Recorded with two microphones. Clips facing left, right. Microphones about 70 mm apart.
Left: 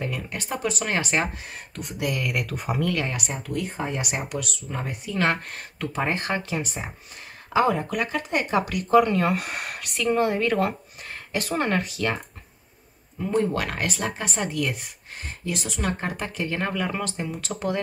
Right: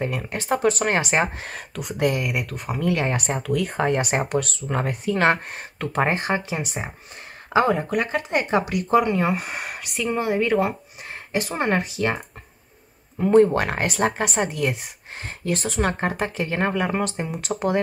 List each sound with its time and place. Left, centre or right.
0.0 s speech: right
1.4 s speech: right
2.2 s speech: centre
2.9 s speech: right
3.5 s speech: right
4.0 s speech: right
4.6 s speech: right
5.0 s speech: right
7.5 s speech: right
8.6 s speech: centre
11.5 s speech: right
13.2 s speech: right
13.5 s speech: right
15.5 s speech: right